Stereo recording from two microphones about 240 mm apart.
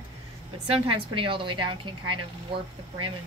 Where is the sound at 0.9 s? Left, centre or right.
Right.